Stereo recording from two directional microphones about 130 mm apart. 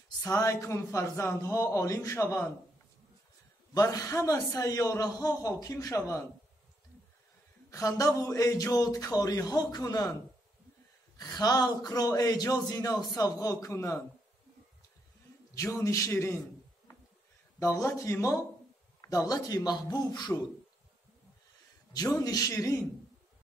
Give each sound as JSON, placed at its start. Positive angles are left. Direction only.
{"t": 0.2, "sound": "a man's voice", "side_deg": 25}
{"t": 3.7, "sound": "a man's voice", "side_deg": 25}
{"t": 7.7, "sound": "a man's voice", "side_deg": 25}
{"t": 11.1, "sound": "a man's voice", "side_deg": 30}
{"t": 15.8, "sound": "a man's voice", "side_deg": 25}
{"t": 17.6, "sound": "a man's voice", "side_deg": 20}
{"t": 22.2, "sound": "a man's voice", "side_deg": 25}